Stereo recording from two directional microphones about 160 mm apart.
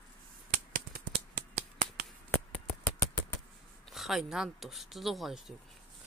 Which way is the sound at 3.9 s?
Centre (ahead or behind).